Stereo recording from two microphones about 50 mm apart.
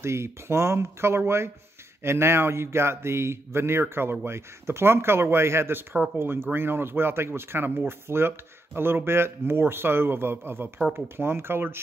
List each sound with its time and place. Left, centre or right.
0.0 s speech: right